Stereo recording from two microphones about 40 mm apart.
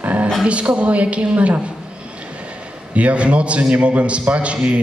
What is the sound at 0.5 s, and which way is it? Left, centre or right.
A man's voice, right.